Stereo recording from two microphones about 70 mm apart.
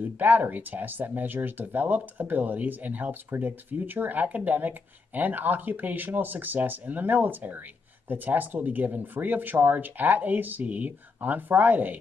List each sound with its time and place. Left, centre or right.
0.2 s speech: right